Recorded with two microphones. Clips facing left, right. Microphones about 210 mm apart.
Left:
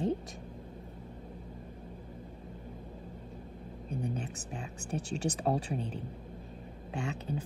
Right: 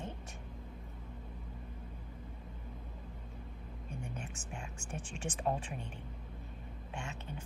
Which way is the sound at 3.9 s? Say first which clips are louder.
Left 9 dB; 35° left (ahead or behind).